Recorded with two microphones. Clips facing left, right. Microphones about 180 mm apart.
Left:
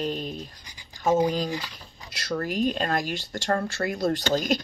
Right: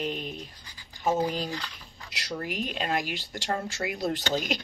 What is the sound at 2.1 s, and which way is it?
Speech, 15° right (ahead or behind).